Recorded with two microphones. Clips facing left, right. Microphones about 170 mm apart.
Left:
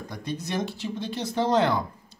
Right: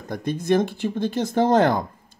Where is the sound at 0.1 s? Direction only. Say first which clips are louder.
Right 11 dB; 50° right (ahead or behind).